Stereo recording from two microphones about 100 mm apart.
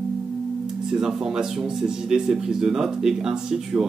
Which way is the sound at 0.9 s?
5° right (ahead or behind).